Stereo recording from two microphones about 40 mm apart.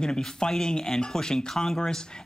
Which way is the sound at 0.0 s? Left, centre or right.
Centre.